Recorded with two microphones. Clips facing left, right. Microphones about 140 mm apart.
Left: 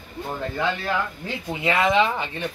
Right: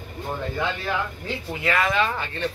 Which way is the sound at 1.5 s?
25° left (ahead or behind).